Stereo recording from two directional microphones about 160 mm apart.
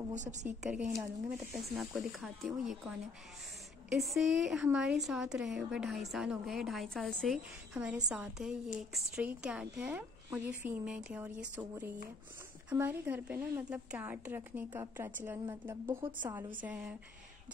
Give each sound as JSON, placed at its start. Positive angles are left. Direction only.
{"t": 0.1, "sound": "a woman's voice", "side_deg": -50}
{"t": 0.5, "sound": "a woman's voice", "side_deg": -10}